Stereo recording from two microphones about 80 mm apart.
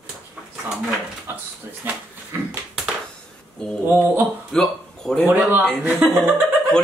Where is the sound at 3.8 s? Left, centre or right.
Right.